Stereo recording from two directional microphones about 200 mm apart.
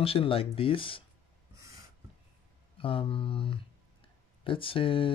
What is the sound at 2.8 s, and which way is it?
Speech, 25° left (ahead or behind).